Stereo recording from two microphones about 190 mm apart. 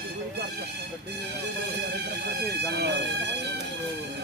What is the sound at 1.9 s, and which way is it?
Speech, 60° right (ahead or behind).